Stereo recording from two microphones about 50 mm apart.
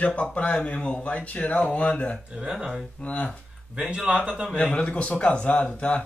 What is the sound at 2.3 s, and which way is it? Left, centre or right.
Speech, centre.